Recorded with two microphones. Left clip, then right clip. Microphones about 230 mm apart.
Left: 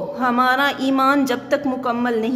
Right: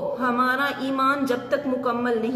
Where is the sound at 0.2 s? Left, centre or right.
Left.